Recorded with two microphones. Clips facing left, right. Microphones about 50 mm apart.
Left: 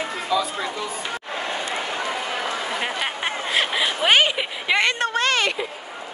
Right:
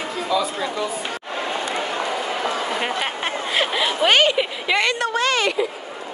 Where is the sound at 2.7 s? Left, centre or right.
Centre.